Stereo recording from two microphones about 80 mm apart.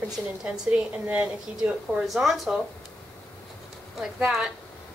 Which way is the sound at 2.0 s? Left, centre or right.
Centre.